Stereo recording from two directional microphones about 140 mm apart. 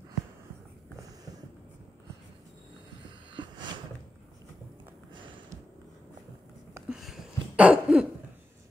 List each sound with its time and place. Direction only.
3.3 s snort: 35° right (ahead or behind)
6.9 s cough: 5° right (ahead or behind)